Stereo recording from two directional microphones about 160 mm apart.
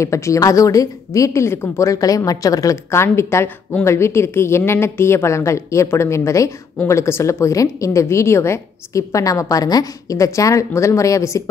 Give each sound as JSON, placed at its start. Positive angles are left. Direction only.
{"t": 0.0, "sound": "a woman's voice", "side_deg": 20}